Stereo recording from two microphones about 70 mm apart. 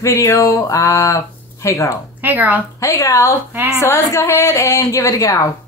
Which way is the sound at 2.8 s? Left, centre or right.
Left.